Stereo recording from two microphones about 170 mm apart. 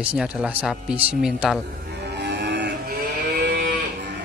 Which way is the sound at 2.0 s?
80° right.